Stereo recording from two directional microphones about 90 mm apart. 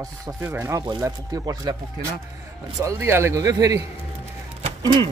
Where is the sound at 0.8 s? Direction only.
45° right (ahead or behind).